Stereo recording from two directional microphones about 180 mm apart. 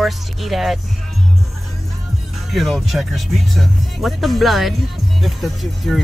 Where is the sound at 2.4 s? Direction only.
Centre (ahead or behind).